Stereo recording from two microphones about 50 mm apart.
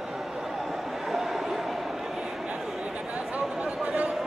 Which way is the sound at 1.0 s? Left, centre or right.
Centre.